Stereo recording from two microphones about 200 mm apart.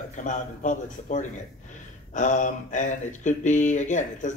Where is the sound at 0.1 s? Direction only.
40° left (ahead or behind).